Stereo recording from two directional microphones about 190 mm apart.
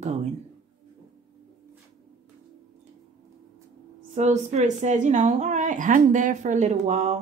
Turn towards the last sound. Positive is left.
turn(degrees=-35)  # may be behind; listen again after turning